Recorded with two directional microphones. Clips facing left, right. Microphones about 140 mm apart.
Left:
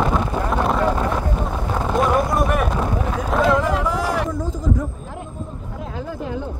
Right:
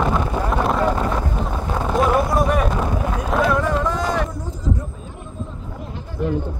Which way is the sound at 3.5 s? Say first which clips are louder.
Left 1 dB; 10° left (ahead or behind).